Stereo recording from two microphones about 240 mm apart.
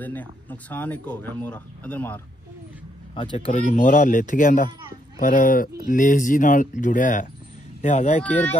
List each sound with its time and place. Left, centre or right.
0.0 s speech: centre
3.2 s speech: left
8.2 s speech: centre